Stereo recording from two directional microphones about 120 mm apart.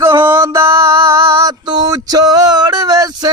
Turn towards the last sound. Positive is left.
turn(degrees=-35)  # may be behind; listen again after turning